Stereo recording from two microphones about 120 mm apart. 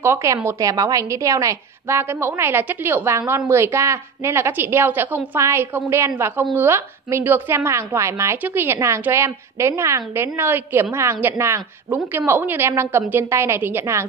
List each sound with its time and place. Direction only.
0.0 s a woman's voice: 20° right (ahead or behind)